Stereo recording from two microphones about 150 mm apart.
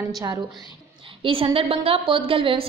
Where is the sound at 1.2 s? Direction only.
35° right (ahead or behind).